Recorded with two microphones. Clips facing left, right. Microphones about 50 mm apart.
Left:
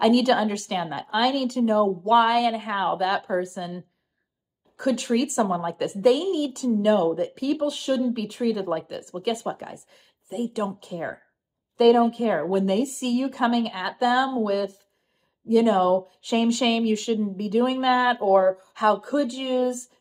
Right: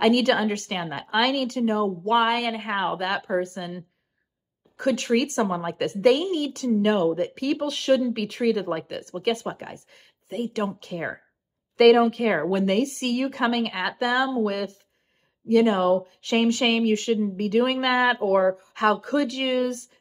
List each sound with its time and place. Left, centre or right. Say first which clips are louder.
0.0 s speech: left 1 dB; right
7.6 s speech: right 4 dB; right
11.7 s speech: right 1 dB; right
17.4 s speech: left 1 dB; right
17.9 s speech: left 2 dB; right